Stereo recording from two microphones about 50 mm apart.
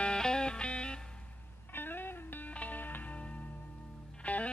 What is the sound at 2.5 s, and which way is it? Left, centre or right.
Music, left.